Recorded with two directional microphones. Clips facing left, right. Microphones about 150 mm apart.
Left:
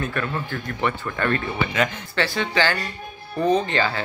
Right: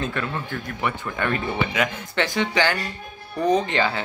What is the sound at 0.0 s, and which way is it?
A man's voice, 20° right (ahead or behind).